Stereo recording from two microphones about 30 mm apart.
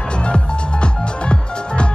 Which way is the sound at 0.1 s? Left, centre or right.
Left.